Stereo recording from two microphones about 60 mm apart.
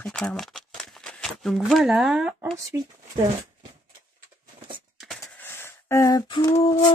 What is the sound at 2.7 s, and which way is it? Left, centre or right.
Speech, right.